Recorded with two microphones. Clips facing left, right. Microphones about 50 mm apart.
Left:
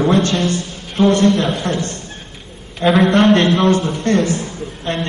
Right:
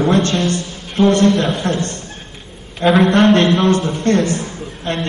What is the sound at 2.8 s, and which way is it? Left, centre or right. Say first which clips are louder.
Mantra: right 1 dB; centre.